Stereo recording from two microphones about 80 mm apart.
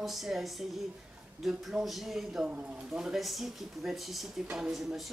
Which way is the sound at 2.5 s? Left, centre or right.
Centre.